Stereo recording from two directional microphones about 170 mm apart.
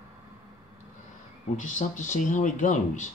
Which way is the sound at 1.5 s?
45° left (ahead or behind).